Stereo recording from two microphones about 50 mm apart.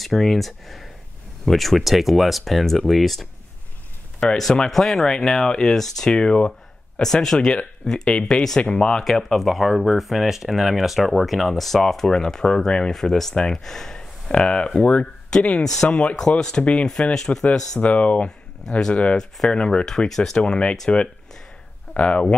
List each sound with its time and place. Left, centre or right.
0.0 s speech: centre
9.0 s speech: centre
17.7 s speech: left
18.7 s speech: centre
21.9 s speech: left